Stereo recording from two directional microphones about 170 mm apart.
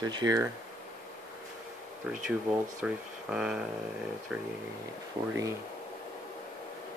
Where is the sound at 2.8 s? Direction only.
5° right (ahead or behind).